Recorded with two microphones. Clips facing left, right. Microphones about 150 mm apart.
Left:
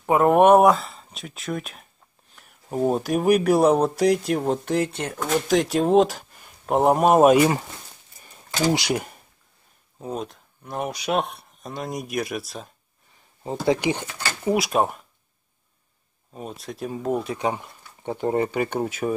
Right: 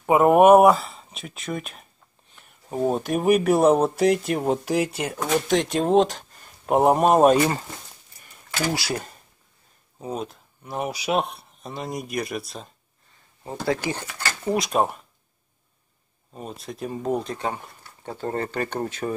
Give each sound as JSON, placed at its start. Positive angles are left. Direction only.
{"t": 0.0, "sound": "speech", "side_deg": -5}
{"t": 6.6, "sound": "speech", "side_deg": -5}
{"t": 8.2, "sound": "a sound", "side_deg": 25}
{"t": 9.9, "sound": "speech", "side_deg": 0}
{"t": 13.4, "sound": "speech", "side_deg": 20}
{"t": 16.3, "sound": "speech", "side_deg": 0}